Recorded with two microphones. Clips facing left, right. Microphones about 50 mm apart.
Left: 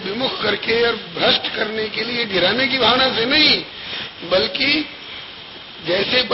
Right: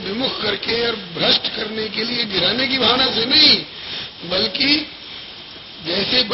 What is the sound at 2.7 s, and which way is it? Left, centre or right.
Speech, centre.